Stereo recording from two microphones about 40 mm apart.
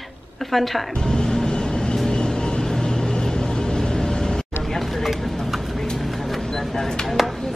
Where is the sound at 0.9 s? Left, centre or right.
Centre.